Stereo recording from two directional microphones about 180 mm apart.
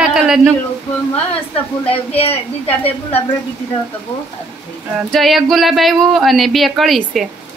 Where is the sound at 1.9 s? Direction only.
30° left (ahead or behind).